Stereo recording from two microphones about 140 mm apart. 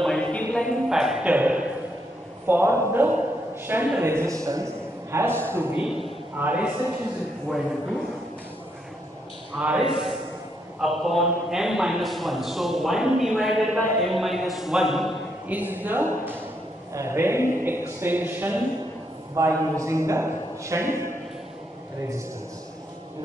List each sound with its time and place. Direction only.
0.0 s a sound: 5° left (ahead or behind)
0.8 s music: 5° right (ahead or behind)
2.4 s a man's voice: 15° right (ahead or behind)
9.6 s a man's voice: 10° right (ahead or behind)
15.4 s a man's voice: 15° right (ahead or behind)